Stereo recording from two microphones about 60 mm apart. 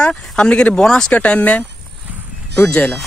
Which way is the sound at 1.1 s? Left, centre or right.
Left.